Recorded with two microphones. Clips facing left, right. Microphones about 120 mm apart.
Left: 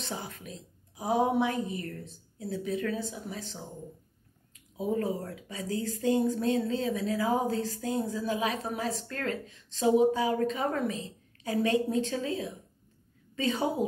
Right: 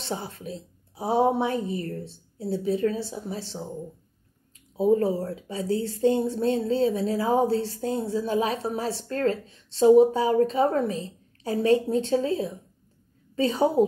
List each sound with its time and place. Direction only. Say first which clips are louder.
0.0 s speech: right 6 dB; 30° right (ahead or behind)
4.7 s speech: right 9 dB; 30° right (ahead or behind)